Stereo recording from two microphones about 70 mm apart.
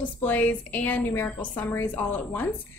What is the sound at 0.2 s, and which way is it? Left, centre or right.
A woman's voice, left.